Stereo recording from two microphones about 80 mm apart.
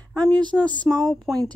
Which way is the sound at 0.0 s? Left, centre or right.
Centre.